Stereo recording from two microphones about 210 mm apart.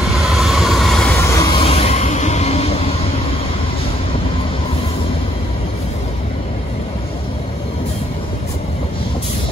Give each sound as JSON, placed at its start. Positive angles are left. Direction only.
{"t": 0.3, "sound": "train", "side_deg": 0}
{"t": 1.1, "sound": "vehicle", "side_deg": 15}
{"t": 1.6, "sound": "train", "side_deg": 30}